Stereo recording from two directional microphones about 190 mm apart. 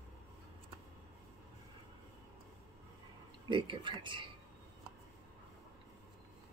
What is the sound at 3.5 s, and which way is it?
Speech, 25° right (ahead or behind).